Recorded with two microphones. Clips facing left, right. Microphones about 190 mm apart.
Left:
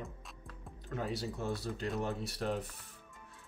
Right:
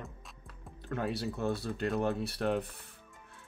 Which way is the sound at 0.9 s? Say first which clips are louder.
Right 3 dB; 60° right (ahead or behind).